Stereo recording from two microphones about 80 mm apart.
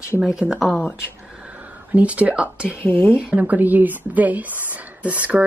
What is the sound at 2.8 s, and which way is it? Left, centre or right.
Speech, left.